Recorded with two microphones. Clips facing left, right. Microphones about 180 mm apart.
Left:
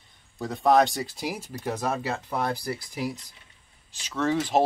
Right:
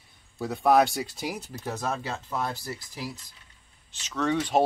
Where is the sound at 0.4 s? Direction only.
5° right (ahead or behind); by 3.1 s 15° left (ahead or behind).